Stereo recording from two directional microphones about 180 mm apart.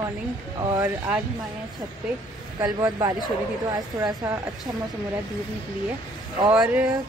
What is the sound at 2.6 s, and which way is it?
Speech, 20° right (ahead or behind).